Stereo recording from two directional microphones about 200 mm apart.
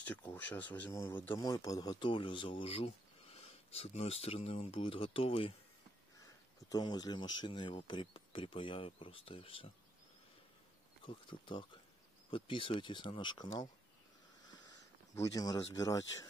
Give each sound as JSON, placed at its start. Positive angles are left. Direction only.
{"t": 0.0, "sound": "speech", "side_deg": 5}
{"t": 11.1, "sound": "speech", "side_deg": 25}
{"t": 15.1, "sound": "speech", "side_deg": 20}